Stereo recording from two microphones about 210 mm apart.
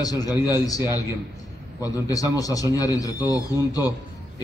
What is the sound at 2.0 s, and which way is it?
A man's voice, 15° left (ahead or behind).